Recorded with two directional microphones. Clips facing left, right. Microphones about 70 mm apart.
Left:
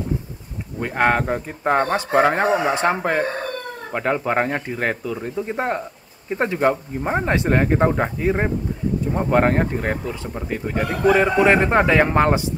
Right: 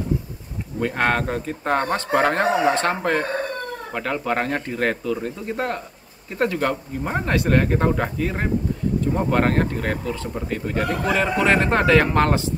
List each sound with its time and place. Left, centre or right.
0.7 s speech: centre
5.5 s speech: left